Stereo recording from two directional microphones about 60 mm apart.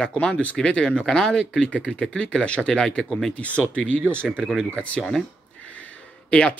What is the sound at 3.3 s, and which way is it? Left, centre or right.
Speech, left.